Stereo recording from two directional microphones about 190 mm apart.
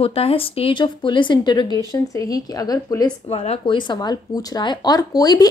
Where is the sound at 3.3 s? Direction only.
35° left (ahead or behind).